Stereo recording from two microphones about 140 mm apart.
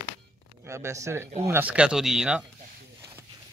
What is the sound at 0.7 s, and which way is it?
Speech, 20° right (ahead or behind).